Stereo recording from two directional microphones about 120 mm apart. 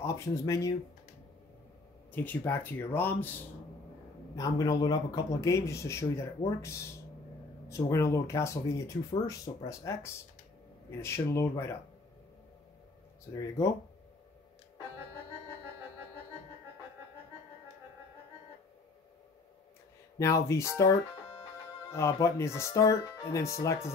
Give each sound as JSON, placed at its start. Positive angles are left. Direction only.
{"t": 0.0, "sound": "speech", "side_deg": 25}
{"t": 2.1, "sound": "speech", "side_deg": 15}
{"t": 4.4, "sound": "speech", "side_deg": 30}
{"t": 20.2, "sound": "speech", "side_deg": 25}
{"t": 21.9, "sound": "speech", "side_deg": 25}